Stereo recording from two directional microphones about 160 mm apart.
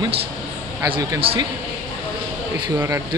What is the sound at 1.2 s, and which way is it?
Speech, 35° right (ahead or behind).